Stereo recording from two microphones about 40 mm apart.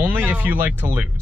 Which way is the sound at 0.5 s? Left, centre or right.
Right.